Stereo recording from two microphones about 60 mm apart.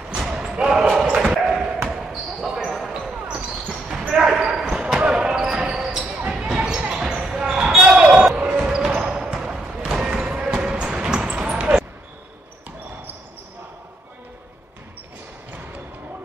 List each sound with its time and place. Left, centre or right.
0.1 s basketball bounce: centre
1.0 s bow-wow: centre
1.4 s dog: centre
1.9 s basketball bounce: centre
3.3 s basketball bounce: centre